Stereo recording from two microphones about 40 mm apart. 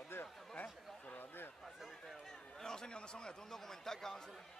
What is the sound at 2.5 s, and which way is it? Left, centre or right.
A man's voice, centre.